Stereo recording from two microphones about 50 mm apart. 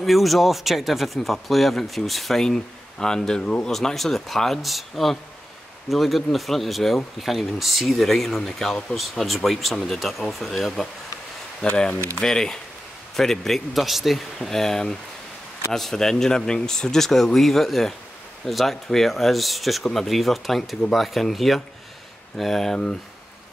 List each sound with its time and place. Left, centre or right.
0.0 s speech: centre
3.7 s speech: centre
11.7 s speech: centre